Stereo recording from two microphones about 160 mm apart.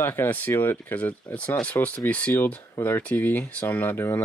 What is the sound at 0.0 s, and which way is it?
Speech, 15° left (ahead or behind).